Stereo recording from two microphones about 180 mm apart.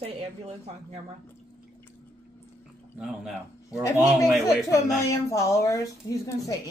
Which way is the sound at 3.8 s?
20° left (ahead or behind).